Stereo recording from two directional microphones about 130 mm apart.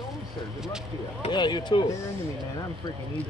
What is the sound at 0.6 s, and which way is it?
Speech, 5° right (ahead or behind).